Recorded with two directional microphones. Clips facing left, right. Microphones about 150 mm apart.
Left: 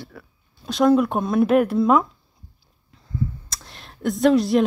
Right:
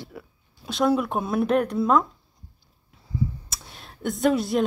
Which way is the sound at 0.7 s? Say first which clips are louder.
Left 5 dB; centre (ahead or behind).